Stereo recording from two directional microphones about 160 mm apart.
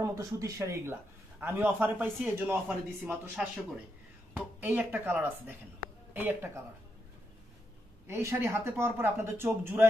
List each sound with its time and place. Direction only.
0.0 s a man's voice: 20° right (ahead or behind)
8.1 s a man's voice: 15° right (ahead or behind)